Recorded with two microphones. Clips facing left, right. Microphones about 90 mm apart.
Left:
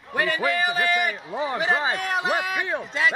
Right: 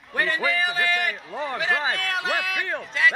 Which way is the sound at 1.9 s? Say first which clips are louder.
Left 2 dB; 30° left (ahead or behind).